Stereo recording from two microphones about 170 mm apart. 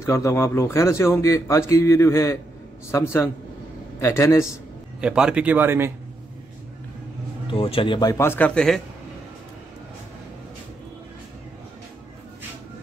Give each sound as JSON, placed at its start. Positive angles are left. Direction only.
{"t": 0.0, "sound": "a man's voice", "side_deg": 15}
{"t": 5.0, "sound": "speech", "side_deg": -5}
{"t": 7.5, "sound": "speech", "side_deg": 30}